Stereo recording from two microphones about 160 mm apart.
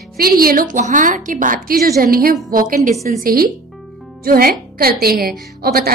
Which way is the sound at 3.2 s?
65° right (ahead or behind).